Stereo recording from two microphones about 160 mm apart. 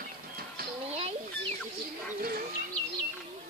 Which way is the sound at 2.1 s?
65° right (ahead or behind).